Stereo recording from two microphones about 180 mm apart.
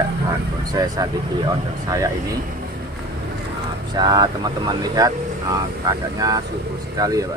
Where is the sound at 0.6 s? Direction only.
20° right (ahead or behind).